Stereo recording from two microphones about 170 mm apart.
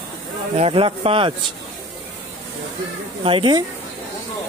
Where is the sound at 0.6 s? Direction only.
35° right (ahead or behind).